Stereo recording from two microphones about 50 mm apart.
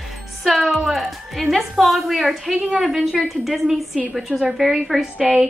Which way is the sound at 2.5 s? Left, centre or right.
Centre.